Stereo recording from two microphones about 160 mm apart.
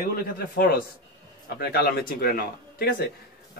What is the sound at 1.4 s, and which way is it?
Speech, 85° left.